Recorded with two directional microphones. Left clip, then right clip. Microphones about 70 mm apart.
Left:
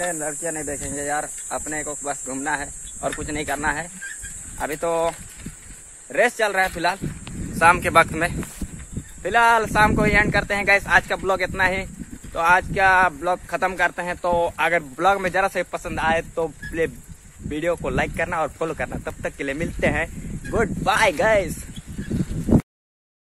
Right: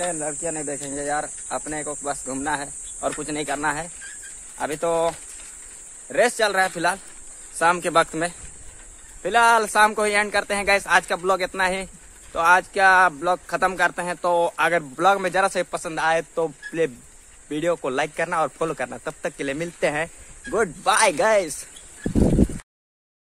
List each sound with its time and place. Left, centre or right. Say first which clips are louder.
0.0 s speech: left 1 dB; centre
0.8 s speech: even; right
6.1 s speech: even; right
9.2 s speech: even; centre; by 14.9 s right
15.0 s speech: right 1 dB; centre
15.4 s speech: right 1 dB; right
16.4 s speech: even; centre
17.5 s speech: even; right